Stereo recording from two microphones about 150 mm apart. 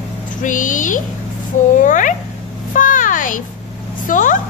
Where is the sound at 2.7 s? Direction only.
60° left (ahead or behind).